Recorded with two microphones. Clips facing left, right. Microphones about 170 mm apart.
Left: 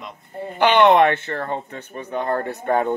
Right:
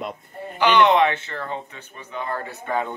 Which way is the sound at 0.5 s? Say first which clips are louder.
Left 3 dB; 55° left (ahead or behind).